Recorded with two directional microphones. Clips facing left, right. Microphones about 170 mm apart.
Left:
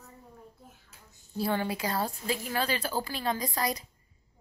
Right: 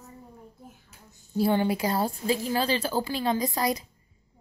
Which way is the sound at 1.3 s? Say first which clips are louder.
Right 6 dB; 30° right (ahead or behind).